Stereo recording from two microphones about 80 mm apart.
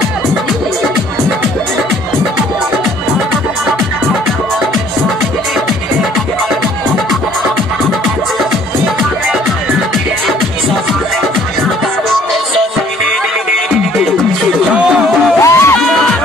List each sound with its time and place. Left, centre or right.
14.7 s music: centre
15.4 s music: left
15.8 s music: centre